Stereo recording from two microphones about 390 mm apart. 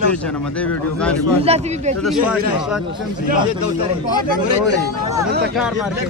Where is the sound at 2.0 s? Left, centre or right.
Centre.